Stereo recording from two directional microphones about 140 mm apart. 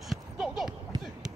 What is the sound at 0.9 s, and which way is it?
Run, 30° right (ahead or behind).